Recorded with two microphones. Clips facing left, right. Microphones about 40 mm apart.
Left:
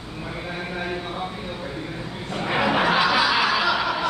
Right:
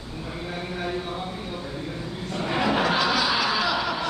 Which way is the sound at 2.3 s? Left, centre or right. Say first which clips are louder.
Left 2 dB; left.